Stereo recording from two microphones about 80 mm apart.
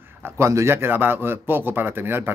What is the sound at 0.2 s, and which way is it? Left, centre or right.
Speech, right.